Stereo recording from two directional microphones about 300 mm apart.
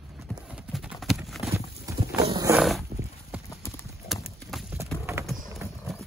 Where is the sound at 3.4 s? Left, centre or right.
Centre.